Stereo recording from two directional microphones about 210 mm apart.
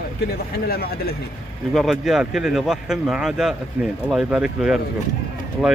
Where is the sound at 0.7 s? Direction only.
45° left (ahead or behind).